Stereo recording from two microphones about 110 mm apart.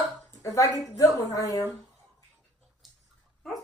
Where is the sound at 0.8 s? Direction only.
30° left (ahead or behind).